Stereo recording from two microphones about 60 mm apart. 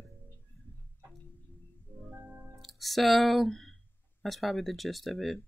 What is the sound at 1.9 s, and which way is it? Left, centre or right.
Music, left.